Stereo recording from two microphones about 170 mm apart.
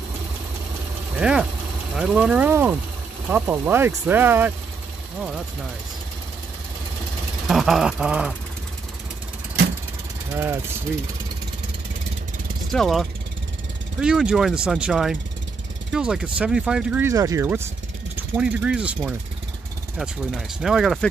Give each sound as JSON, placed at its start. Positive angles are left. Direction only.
{"t": 1.1, "sound": "speech", "side_deg": -5}
{"t": 7.4, "sound": "speech", "side_deg": 0}
{"t": 10.3, "sound": "speech", "side_deg": -15}
{"t": 12.7, "sound": "speech", "side_deg": 0}
{"t": 17.1, "sound": "speech", "side_deg": -20}